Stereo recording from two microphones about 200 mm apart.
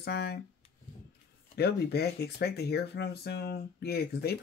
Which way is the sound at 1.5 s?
55° left (ahead or behind).